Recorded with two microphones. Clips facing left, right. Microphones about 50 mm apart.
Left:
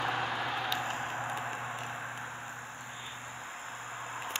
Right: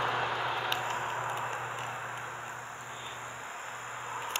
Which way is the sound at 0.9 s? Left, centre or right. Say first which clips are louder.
Right 2 dB; right.